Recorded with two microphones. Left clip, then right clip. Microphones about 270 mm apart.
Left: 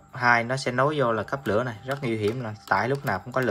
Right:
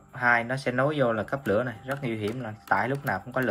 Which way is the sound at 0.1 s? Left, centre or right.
Centre.